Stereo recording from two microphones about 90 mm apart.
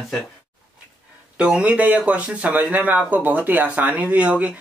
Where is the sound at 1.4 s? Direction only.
15° right (ahead or behind).